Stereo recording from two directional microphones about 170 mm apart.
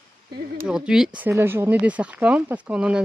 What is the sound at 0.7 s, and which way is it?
Speech, 5° right (ahead or behind).